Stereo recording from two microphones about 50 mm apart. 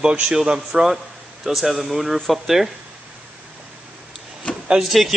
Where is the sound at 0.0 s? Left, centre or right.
Centre.